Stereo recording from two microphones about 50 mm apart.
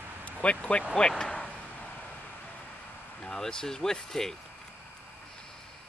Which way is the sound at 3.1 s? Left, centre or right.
Centre.